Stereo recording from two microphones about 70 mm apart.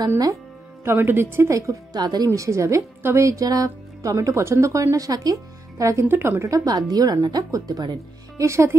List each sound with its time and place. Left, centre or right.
0.8 s a woman's voice: right
2.0 s speech: right
2.2 s speech: right
6.0 s a woman's voice: right
6.4 s speech: right
8.5 s a woman's voice: right